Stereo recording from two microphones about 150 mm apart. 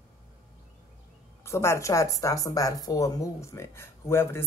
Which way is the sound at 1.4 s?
15° left (ahead or behind).